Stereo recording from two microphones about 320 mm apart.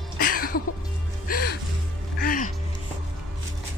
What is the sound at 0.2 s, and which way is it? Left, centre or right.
Music, left.